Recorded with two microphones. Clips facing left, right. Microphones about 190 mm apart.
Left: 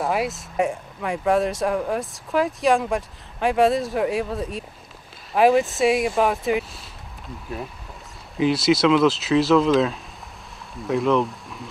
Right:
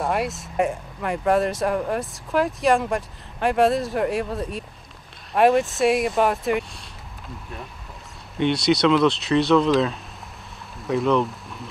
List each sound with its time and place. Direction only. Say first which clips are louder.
0.0 s speech: left 1 dB; centre (ahead or behind)
8.4 s speech: left 1 dB; centre (ahead or behind)